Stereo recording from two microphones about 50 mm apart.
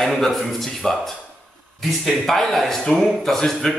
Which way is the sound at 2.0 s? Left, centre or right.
Centre.